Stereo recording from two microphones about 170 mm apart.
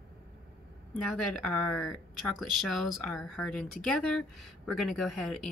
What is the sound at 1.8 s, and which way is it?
Speech, centre (ahead or behind).